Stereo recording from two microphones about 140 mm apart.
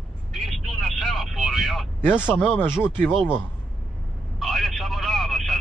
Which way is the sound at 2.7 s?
5° right (ahead or behind).